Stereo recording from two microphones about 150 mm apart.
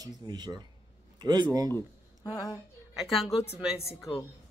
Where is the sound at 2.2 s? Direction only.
25° left (ahead or behind).